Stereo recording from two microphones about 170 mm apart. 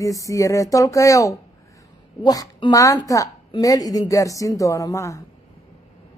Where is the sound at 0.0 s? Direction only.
20° left (ahead or behind).